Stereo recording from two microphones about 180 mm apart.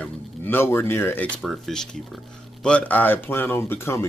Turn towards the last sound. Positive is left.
turn(degrees=15)  # may be behind; listen again after turning